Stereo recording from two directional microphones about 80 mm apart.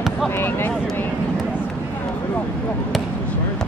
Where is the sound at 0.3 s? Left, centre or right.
Left.